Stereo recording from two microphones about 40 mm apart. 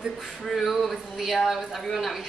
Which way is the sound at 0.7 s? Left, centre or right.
Centre.